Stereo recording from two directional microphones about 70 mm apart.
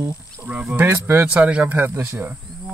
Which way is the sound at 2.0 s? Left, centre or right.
Right.